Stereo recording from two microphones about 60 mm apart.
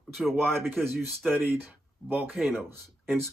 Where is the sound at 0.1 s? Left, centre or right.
Centre.